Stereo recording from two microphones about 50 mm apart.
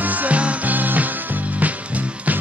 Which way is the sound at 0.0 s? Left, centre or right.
Right.